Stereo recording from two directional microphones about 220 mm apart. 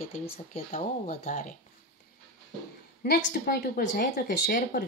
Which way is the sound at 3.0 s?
45° left (ahead or behind).